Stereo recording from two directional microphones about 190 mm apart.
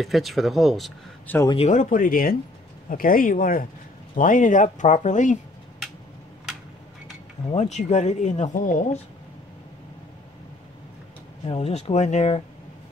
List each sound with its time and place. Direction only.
0.0 s speech: centre (ahead or behind)
1.5 s speech: 35° left (ahead or behind)
7.5 s speech: 35° left (ahead or behind)
11.4 s speech: 35° left (ahead or behind)